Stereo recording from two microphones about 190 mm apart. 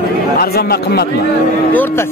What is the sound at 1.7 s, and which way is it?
Speech, 10° left (ahead or behind).